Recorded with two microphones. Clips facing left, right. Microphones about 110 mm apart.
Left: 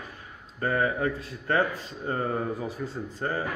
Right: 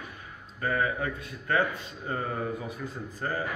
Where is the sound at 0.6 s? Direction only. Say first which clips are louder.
Left 3 dB; 30° left (ahead or behind).